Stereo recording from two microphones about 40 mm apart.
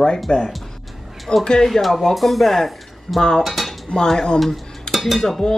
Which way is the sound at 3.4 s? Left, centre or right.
Centre.